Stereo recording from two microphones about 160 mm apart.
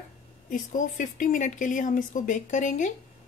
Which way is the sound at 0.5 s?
55° left (ahead or behind).